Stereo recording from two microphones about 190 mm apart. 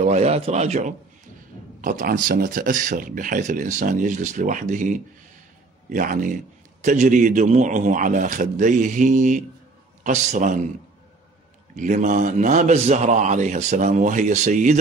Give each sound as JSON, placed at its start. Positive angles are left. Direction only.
{"t": 0.0, "sound": "a man's voice", "side_deg": -35}
{"t": 11.7, "sound": "a man's voice", "side_deg": -40}